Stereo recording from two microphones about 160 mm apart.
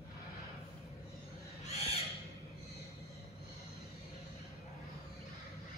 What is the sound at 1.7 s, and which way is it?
Bird, 40° left (ahead or behind).